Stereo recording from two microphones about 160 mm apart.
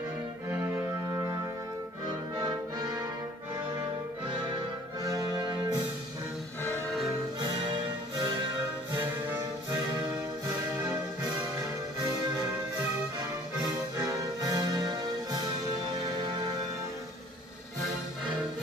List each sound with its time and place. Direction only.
0.5 s music: 15° right (ahead or behind)
2.0 s music: 25° right (ahead or behind)
4.3 s music: 30° right (ahead or behind)
7.3 s music: 30° right (ahead or behind)
11.2 s music: 25° right (ahead or behind)